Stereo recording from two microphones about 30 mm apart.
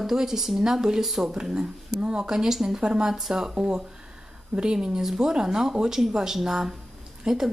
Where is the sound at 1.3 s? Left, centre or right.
Right.